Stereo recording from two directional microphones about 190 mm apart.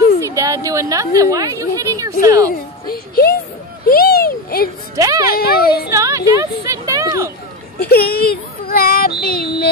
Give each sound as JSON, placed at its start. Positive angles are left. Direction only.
{"t": 0.2, "sound": "a sound", "side_deg": -15}
{"t": 2.2, "sound": "speech", "side_deg": -15}
{"t": 2.9, "sound": "music", "side_deg": 50}
{"t": 3.9, "sound": "a sound", "side_deg": 55}
{"t": 4.9, "sound": "a woman's voice", "side_deg": -15}
{"t": 5.3, "sound": "speech", "side_deg": 55}
{"t": 5.9, "sound": "speech", "side_deg": -15}
{"t": 7.8, "sound": "speech", "side_deg": 55}